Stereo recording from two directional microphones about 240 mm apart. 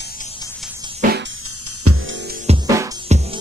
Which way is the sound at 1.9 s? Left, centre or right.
Right.